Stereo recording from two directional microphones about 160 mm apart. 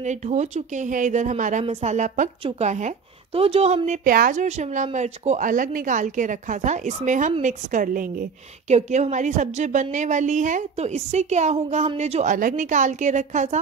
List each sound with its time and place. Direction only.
0.0 s a woman's voice: 45° right (ahead or behind)
4.0 s a woman's voice: 60° right (ahead or behind)
8.6 s a woman's voice: 45° right (ahead or behind)